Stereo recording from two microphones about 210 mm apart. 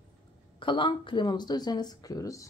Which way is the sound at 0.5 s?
25° left (ahead or behind).